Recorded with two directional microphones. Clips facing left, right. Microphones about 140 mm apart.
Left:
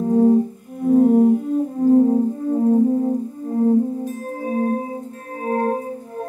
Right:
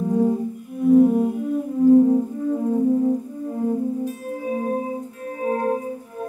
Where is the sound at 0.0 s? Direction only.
35° left (ahead or behind).